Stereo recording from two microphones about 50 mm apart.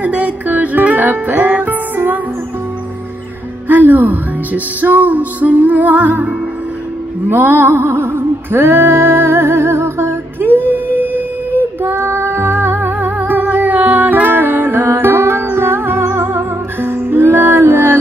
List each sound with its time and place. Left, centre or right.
0.0 s music: right
3.6 s music: right
11.5 s music: right